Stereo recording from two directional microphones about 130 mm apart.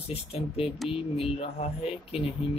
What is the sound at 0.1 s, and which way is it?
Speech, 50° left (ahead or behind).